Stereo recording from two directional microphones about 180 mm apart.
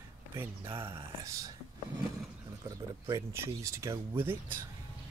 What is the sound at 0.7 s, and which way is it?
Speech, 15° right (ahead or behind).